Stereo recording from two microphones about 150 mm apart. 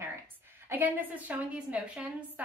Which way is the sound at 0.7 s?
10° right (ahead or behind).